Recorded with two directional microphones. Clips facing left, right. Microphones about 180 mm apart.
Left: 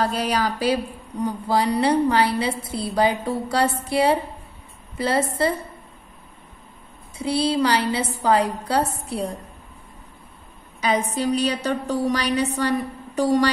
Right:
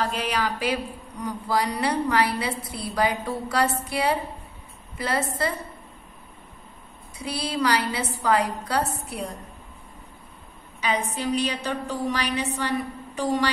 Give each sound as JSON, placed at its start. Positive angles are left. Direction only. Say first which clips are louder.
{"t": 0.0, "sound": "a woman's voice", "louder": "left 4 dB", "side_deg": 35}
{"t": 7.2, "sound": "a woman's voice", "louder": "left 7 dB", "side_deg": 30}
{"t": 10.8, "sound": "a woman's voice", "louder": "left 4 dB", "side_deg": 40}